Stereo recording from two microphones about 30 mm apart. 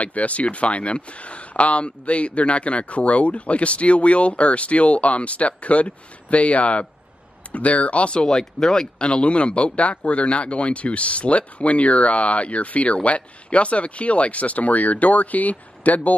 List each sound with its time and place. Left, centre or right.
0.0 s speech: left
8.3 s speech: centre
8.9 s speech: left